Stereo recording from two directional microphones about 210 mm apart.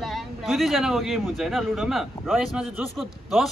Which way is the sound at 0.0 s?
Centre (ahead or behind).